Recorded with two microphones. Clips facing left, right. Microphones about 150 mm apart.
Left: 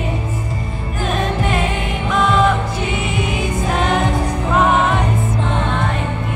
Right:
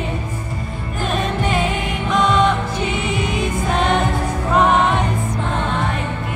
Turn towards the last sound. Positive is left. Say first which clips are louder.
# even
turn(degrees=0)  # may be behind; listen again after turning